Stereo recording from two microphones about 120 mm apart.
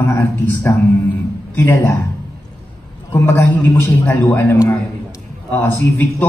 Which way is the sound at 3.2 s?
15° left (ahead or behind).